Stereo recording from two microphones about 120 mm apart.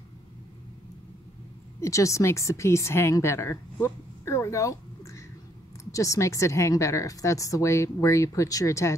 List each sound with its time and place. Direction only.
1.8 s a woman's voice: 25° left (ahead or behind)